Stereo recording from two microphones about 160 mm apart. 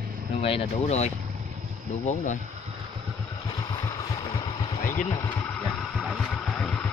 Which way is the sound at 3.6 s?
25° left (ahead or behind).